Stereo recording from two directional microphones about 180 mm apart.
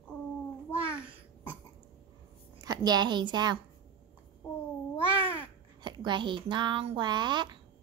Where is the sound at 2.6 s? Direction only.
20° right (ahead or behind).